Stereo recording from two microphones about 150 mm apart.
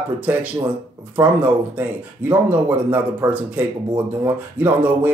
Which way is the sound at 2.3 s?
15° right (ahead or behind).